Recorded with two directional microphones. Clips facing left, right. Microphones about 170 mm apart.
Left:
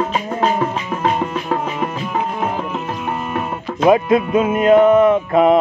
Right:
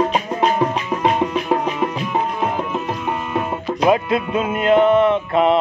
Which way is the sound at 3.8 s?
20° left (ahead or behind).